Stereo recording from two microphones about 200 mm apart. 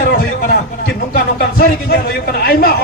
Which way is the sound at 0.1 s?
50° left (ahead or behind).